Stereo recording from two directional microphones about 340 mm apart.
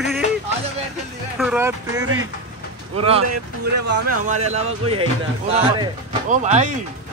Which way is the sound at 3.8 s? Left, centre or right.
Right.